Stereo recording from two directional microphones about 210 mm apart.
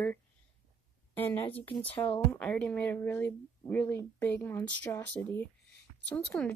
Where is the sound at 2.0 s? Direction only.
20° left (ahead or behind).